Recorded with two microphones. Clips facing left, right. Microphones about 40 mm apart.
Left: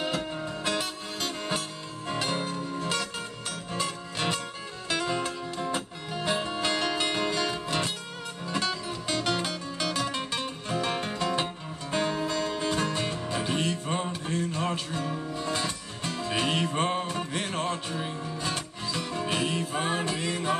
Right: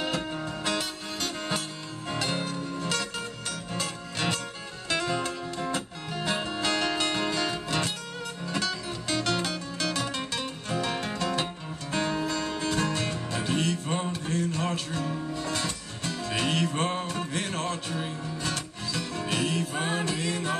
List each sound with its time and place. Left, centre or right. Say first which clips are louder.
0.0 s music: even; centre